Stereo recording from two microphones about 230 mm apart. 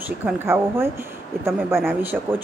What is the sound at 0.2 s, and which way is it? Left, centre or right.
Speech, centre.